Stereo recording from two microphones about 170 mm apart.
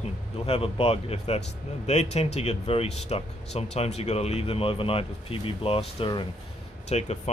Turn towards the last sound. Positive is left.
turn(degrees=40)  # may be behind; listen again after turning